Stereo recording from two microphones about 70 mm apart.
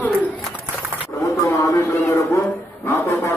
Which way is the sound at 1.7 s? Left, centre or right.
Left.